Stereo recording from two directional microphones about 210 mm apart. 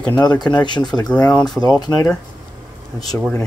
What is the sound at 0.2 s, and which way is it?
Speech, 20° left (ahead or behind).